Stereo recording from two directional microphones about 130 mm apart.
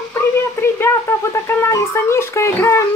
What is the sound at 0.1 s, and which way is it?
A child's voice, 20° left (ahead or behind).